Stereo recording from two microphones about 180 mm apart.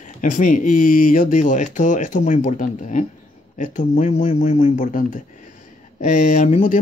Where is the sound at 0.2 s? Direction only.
45° left (ahead or behind).